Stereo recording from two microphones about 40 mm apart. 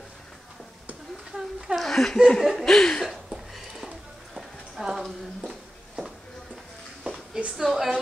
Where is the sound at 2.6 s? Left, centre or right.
Centre.